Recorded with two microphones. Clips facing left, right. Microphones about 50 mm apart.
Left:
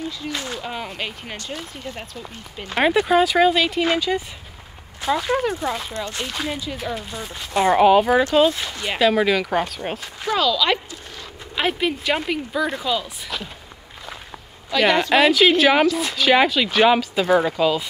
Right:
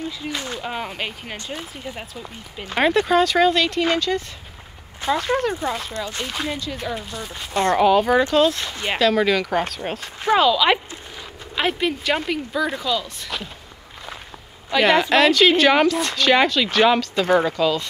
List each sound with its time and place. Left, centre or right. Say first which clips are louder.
0.2 s speech: even; centre
6.5 s speech: even; centre
10.2 s speech: right 4 dB; right
11.5 s speech: even; centre
13.3 s speech: even; centre
14.7 s speech: right 1 dB; centre